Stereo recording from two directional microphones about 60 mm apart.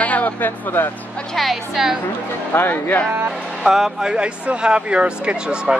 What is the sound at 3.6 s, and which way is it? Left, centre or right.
Speech, centre.